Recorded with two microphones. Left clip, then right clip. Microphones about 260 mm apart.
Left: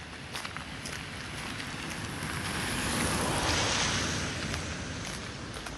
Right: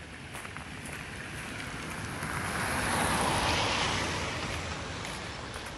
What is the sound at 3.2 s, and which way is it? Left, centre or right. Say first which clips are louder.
Boat: right 1 dB; right.